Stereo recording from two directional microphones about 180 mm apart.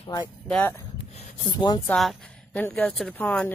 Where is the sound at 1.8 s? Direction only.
5° left (ahead or behind).